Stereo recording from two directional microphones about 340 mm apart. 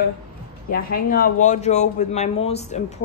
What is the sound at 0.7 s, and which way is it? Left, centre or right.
Speech, left.